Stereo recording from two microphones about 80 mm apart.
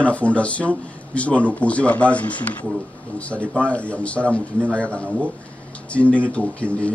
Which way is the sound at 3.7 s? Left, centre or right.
Centre.